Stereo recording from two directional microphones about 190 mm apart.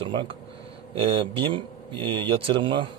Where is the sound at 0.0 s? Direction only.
25° right (ahead or behind).